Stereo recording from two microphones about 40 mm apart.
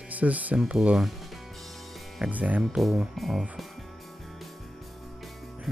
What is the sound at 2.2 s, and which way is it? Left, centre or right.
Speech, right.